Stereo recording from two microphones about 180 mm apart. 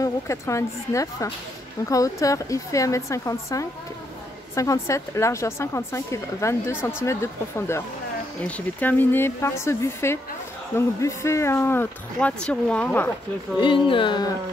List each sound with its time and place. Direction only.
0.0 s speech: 15° left (ahead or behind)
13.6 s speech: 25° left (ahead or behind)